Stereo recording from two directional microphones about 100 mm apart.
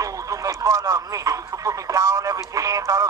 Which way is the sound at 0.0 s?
35° right (ahead or behind).